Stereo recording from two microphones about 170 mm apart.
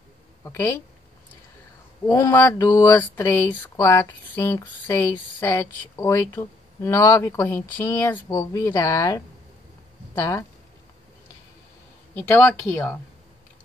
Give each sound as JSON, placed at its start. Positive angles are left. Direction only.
{"t": 0.4, "sound": "speech", "side_deg": 15}
{"t": 2.0, "sound": "speech", "side_deg": 15}
{"t": 12.2, "sound": "speech", "side_deg": 10}